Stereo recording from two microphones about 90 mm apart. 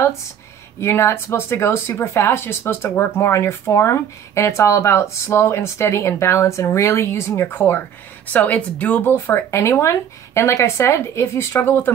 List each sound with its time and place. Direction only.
0.7 s speech: 30° left (ahead or behind)